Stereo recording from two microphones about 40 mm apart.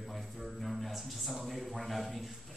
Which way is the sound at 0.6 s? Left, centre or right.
Centre.